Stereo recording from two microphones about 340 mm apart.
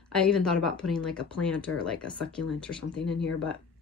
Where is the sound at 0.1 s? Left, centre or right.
Centre.